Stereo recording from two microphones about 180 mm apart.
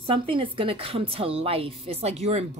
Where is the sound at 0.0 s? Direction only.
30° right (ahead or behind).